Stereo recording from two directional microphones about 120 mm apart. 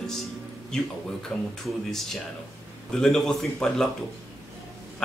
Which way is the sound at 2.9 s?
5° left (ahead or behind).